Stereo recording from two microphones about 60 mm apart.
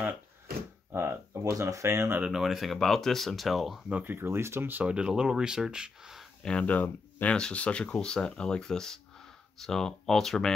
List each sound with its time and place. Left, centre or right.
0.9 s speech: right
2.3 s speech: centre
4.0 s speech: right
4.8 s speech: centre
6.4 s speech: left
7.3 s speech: centre